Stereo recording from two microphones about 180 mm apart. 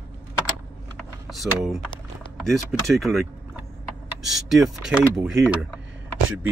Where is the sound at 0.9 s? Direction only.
Centre (ahead or behind).